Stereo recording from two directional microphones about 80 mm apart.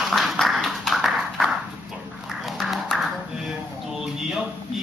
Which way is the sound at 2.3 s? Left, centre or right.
Centre.